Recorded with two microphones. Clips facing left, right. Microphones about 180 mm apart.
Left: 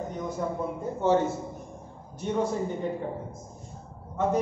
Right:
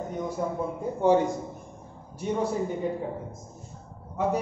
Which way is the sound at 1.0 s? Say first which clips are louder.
Right 2 dB; 15° right (ahead or behind).